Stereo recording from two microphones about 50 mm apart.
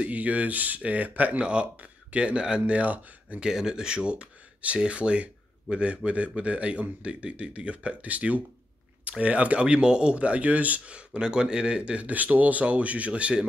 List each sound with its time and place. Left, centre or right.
0.0 s speech: right
1.4 s speech: right
3.4 s speech: centre